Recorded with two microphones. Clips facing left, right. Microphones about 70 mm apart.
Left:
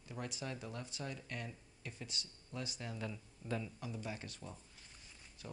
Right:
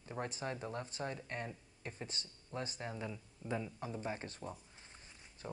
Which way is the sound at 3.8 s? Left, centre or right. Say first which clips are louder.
Right 3 dB; right.